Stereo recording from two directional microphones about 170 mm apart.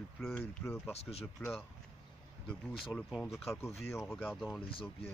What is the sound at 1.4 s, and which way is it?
Speech, 15° left (ahead or behind).